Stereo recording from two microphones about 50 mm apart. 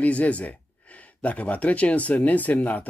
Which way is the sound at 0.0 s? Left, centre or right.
Left.